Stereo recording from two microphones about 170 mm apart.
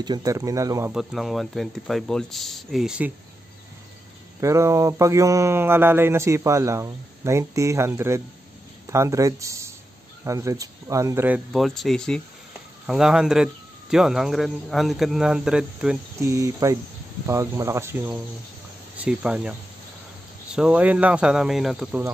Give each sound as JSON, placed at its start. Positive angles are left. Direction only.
{"t": 0.0, "sound": "speech", "side_deg": -25}
{"t": 0.9, "sound": "speech", "side_deg": 0}
{"t": 4.4, "sound": "speech", "side_deg": -15}
{"t": 16.2, "sound": "speech", "side_deg": -15}
{"t": 20.5, "sound": "speech", "side_deg": -5}